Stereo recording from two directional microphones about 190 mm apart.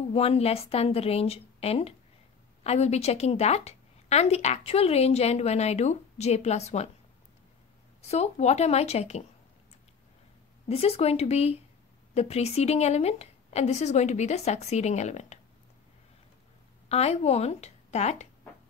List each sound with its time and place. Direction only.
0.1 s a woman's voice: 30° left (ahead or behind)
8.1 s a woman's voice: 35° left (ahead or behind)
10.7 s a woman's voice: 30° left (ahead or behind)
16.9 s a woman's voice: 35° left (ahead or behind)